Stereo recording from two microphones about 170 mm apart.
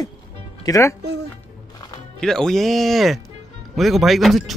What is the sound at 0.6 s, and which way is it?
Speech, 20° left (ahead or behind).